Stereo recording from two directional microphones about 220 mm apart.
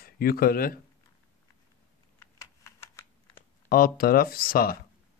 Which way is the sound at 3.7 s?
40° left (ahead or behind).